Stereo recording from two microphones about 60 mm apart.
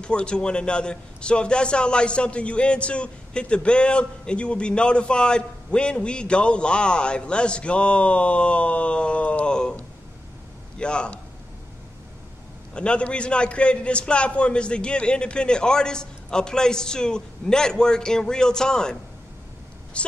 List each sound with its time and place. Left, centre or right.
0.0 s a man's voice: centre
10.8 s a man's voice: centre
12.7 s a man's voice: centre